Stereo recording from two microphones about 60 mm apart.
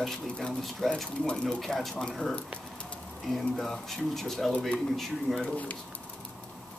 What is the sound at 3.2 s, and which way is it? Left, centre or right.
Speech, centre.